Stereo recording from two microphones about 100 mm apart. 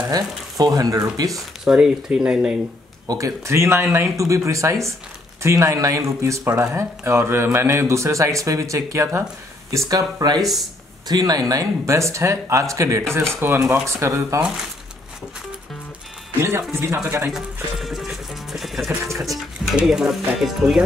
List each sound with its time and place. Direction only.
0.1 s speech: 40° right (ahead or behind)
1.3 s speech: 5° right (ahead or behind)
3.1 s speech: 35° right (ahead or behind)
10.4 s speech: centre (ahead or behind)
11.1 s speech: 45° right (ahead or behind)
16.3 s speech: 25° right (ahead or behind)
17.3 s music: centre (ahead or behind)
19.2 s speech: 5° right (ahead or behind)